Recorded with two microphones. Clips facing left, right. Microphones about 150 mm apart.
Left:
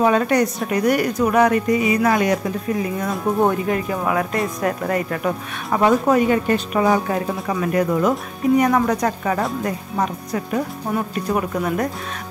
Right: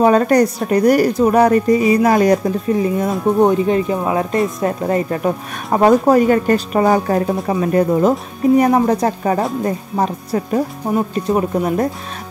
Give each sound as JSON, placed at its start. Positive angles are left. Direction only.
{"t": 0.0, "sound": "speech", "side_deg": -40}